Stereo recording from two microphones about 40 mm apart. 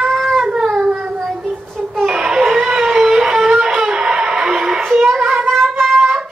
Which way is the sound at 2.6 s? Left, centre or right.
Centre.